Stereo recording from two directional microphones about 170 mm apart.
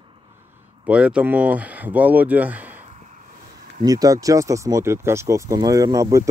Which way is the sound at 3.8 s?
20° right (ahead or behind).